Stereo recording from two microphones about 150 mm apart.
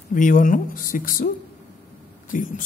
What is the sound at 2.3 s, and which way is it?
Speech, 60° left (ahead or behind).